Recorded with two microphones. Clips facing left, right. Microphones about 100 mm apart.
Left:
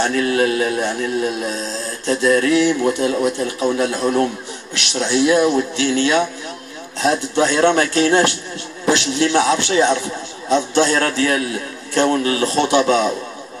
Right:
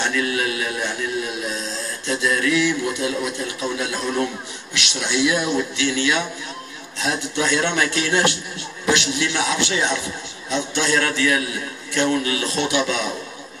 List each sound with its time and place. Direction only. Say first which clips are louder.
0.0 s a man's voice: left 6 dB; 40° left (ahead or behind)